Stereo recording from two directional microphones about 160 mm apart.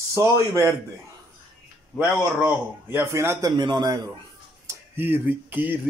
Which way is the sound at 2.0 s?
10° right (ahead or behind).